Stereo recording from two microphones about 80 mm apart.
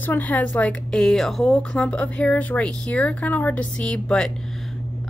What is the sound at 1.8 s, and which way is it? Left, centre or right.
Speech, centre.